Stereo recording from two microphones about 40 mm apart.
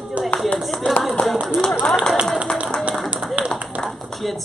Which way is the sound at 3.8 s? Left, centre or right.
Centre.